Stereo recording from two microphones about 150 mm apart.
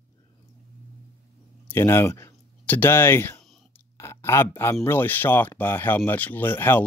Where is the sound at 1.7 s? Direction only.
15° left (ahead or behind).